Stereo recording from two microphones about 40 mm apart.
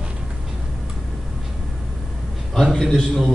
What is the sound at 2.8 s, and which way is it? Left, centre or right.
Speech, centre.